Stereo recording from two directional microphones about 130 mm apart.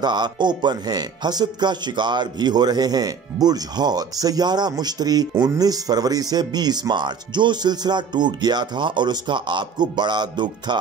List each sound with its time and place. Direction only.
0.0 s speech: 35° right (ahead or behind)